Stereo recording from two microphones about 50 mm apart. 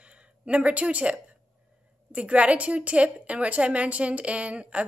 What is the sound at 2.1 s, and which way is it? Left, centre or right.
A woman's voice, right.